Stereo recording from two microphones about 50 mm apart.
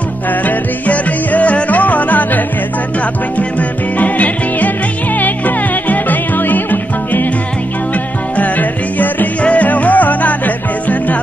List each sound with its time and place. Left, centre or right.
0.5 s music: left
4.0 s music: left
5.9 s music: left
8.4 s music: left